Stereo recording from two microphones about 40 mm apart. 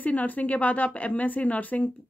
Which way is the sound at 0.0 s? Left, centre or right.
Left.